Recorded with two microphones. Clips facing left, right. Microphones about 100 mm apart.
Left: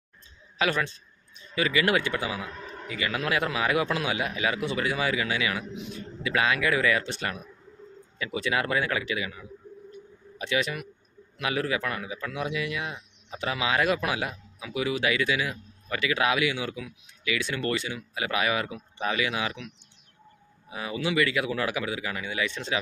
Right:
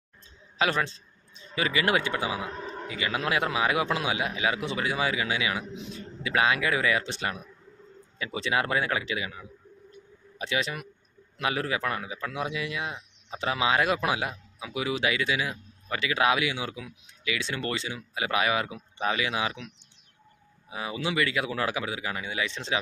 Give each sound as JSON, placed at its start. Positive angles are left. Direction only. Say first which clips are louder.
{"t": 0.6, "sound": "a man's voice", "louder": "even", "side_deg": -30}
{"t": 10.4, "sound": "a man's voice", "louder": "left 2 dB", "side_deg": -30}
{"t": 20.7, "sound": "a man's voice", "louder": "left 2 dB", "side_deg": -25}